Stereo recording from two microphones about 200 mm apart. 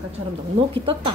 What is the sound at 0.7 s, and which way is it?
Speech, 25° right (ahead or behind).